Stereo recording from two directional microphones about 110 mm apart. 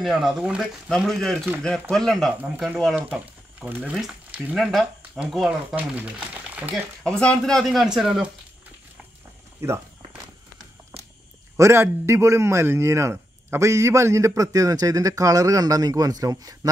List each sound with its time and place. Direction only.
0.0 s a man's voice: 5° right (ahead or behind)
3.6 s speech: 15° right (ahead or behind)
4.6 s speech: centre (ahead or behind); by 6.7 s 15° right (ahead or behind)
6.7 s a man's voice: centre (ahead or behind)
9.6 s walk: 25° right (ahead or behind)
11.5 s a man's voice: 25° right (ahead or behind)